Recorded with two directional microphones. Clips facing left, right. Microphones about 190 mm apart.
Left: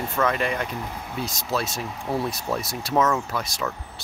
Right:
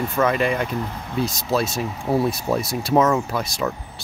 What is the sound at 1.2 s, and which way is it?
Speech, 30° right (ahead or behind).